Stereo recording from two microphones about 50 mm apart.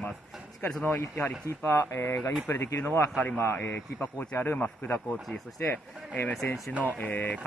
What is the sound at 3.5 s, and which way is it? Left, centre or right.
Speech, left.